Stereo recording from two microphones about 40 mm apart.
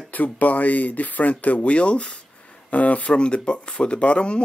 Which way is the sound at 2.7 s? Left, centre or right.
Left.